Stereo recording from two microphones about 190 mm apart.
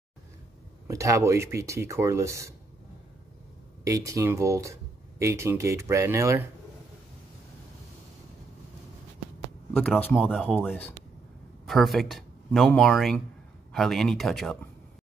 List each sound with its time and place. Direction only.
0.8 s speech: 15° right (ahead or behind)
3.8 s speech: 15° right (ahead or behind)
9.8 s speech: 5° left (ahead or behind)